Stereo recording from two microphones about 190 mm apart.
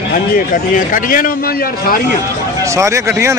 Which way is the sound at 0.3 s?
45° left (ahead or behind).